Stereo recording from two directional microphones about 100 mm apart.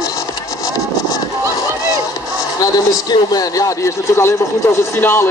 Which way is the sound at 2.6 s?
40° left (ahead or behind).